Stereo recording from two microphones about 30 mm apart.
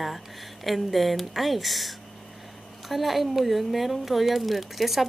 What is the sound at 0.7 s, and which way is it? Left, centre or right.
Speech, centre.